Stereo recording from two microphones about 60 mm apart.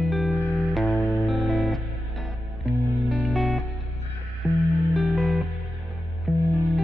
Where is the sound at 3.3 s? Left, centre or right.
Centre.